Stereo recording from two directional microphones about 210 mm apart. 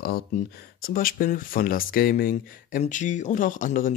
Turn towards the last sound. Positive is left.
turn(degrees=40)  # may be behind; listen again after turning